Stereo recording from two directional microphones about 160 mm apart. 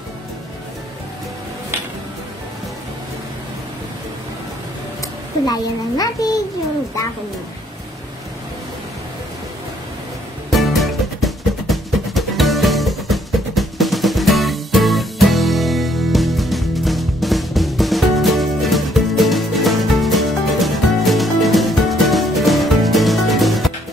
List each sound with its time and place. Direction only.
5.5 s a child's voice: 25° left (ahead or behind)
10.5 s music: centre (ahead or behind)